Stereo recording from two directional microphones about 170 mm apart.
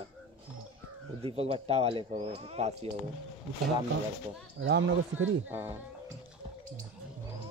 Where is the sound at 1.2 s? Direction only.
35° right (ahead or behind).